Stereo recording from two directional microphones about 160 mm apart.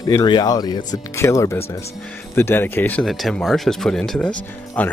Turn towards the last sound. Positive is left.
turn(degrees=10)  # may be behind; listen again after turning